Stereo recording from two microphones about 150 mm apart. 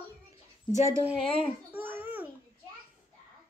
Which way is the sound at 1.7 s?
15° right (ahead or behind).